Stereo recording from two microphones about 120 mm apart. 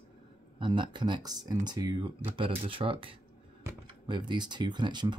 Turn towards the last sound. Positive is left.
turn(degrees=-40)  # may be behind; listen again after turning